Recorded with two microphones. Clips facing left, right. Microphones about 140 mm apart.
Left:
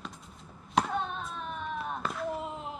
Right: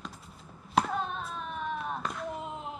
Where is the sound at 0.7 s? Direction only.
Centre (ahead or behind).